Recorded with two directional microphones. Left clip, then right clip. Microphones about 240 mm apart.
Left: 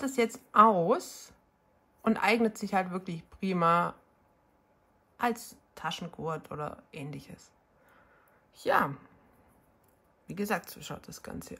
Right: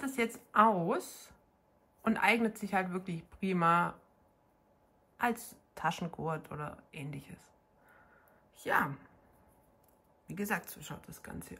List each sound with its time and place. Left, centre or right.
0.0 s a woman's voice: centre
5.1 s speech: centre
8.5 s speech: centre
10.2 s speech: centre